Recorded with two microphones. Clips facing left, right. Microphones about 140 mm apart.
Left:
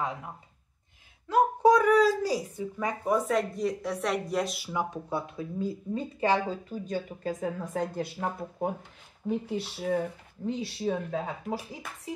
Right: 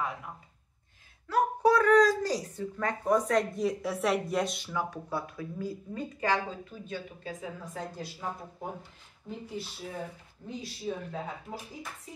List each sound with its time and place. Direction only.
1.3 s child singing: 15° left (ahead or behind)
2.5 s speech: 10° left (ahead or behind)
4.6 s speech: 20° left (ahead or behind); by 8.6 s 55° left (ahead or behind)
9.3 s speech: 70° left (ahead or behind)